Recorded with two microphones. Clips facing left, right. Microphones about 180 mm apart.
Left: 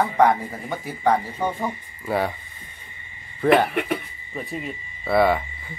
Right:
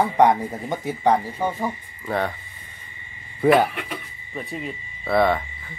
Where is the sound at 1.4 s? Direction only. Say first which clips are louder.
Even; 5° right (ahead or behind).